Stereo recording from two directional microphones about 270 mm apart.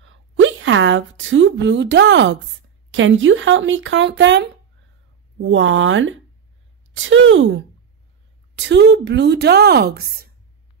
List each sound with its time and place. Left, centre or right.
0.0 s speech: right